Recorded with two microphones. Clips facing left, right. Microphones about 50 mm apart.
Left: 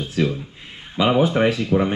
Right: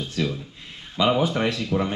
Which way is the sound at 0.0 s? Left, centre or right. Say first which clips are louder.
Left 5 dB; centre.